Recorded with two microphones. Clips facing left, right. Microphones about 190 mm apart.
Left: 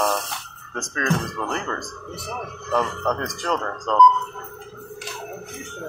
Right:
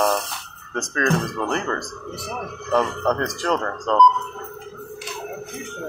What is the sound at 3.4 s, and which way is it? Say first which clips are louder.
Speech: right 1 dB; centre (ahead or behind).